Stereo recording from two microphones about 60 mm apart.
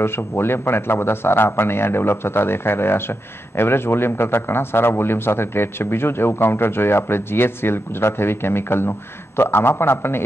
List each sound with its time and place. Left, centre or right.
0.0 s a man's voice: left